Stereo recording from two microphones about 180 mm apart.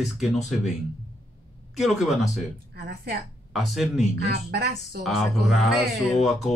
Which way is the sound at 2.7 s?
55° right (ahead or behind).